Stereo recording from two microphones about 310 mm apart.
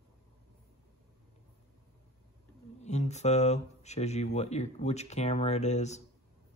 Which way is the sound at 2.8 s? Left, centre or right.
Left.